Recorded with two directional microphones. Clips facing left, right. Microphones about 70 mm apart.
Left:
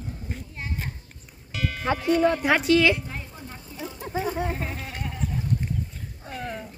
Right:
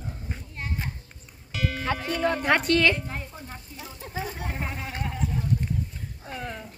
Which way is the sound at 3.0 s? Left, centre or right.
Right.